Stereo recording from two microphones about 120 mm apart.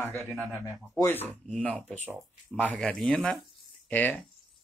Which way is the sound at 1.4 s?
5° left (ahead or behind).